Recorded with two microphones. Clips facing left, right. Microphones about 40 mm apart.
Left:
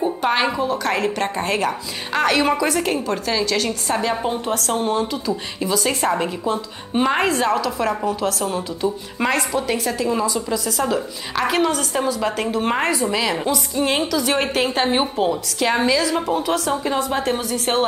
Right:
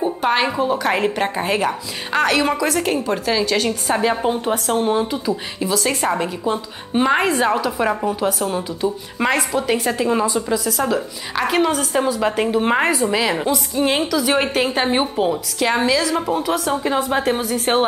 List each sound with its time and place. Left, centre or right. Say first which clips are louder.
0.0 s music: right 1 dB; centre
0.6 s a woman's voice: right 2 dB; centre
1.2 s a woman's voice: right 2 dB; centre
5.6 s a woman's voice: left 1 dB; centre
9.9 s a woman's voice: right 2 dB; right
10.5 s a woman's voice: right 2 dB; centre
17.0 s a woman's voice: right 2 dB; right